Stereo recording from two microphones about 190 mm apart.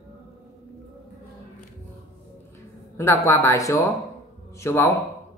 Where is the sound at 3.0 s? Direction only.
15° left (ahead or behind).